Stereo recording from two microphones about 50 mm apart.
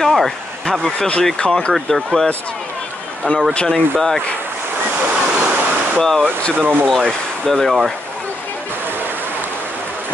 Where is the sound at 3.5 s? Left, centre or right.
Left.